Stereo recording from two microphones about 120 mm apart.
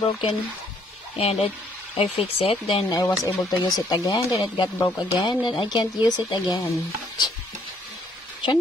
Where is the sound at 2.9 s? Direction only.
30° left (ahead or behind); by 6.7 s 45° left (ahead or behind).